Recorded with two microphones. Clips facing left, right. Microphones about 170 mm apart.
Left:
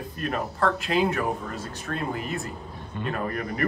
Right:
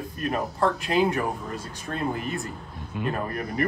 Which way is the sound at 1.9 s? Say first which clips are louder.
Even; 20° right (ahead or behind).